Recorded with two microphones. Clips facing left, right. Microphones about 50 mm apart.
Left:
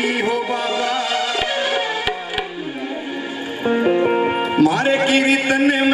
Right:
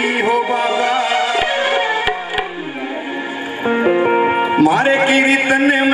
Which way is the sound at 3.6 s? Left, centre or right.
Right.